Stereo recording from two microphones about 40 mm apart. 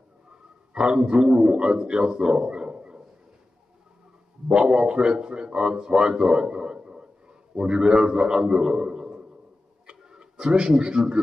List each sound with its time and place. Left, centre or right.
0.3 s a man's voice: centre
4.5 s a man's voice: centre
9.8 s a sound: right